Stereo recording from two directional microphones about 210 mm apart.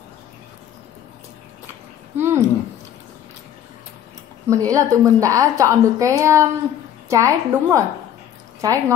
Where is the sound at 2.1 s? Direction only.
10° right (ahead or behind).